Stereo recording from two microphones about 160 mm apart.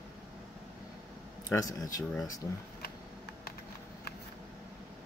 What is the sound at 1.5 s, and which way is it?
Speech, 20° left (ahead or behind).